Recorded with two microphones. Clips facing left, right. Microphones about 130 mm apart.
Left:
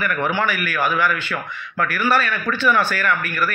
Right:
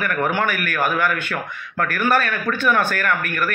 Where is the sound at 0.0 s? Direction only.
50° right (ahead or behind).